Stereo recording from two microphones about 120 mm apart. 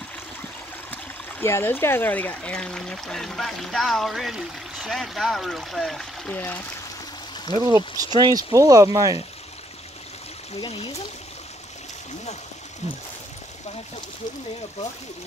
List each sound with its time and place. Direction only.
1.4 s speech: 20° left (ahead or behind)
7.6 s speech: 35° right (ahead or behind)
10.6 s speech: 50° left (ahead or behind)
12.8 s speech: 65° left (ahead or behind)